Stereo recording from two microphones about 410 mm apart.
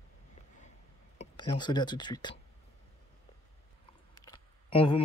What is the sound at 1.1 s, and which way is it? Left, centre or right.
Speech, centre.